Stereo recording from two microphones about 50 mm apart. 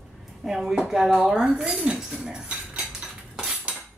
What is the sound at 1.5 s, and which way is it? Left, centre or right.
Speech, centre.